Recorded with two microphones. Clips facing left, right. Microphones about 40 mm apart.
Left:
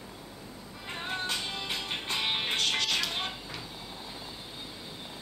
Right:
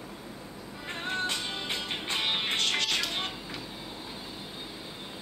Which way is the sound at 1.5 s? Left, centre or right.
Centre.